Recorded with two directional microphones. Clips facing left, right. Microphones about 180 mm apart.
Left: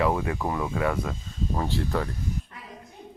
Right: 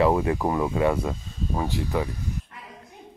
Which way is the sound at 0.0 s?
30° right (ahead or behind).